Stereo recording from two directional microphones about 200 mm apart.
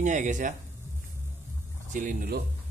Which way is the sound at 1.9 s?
40° right (ahead or behind).